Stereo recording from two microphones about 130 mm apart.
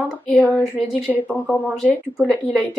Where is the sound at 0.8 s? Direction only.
5° right (ahead or behind).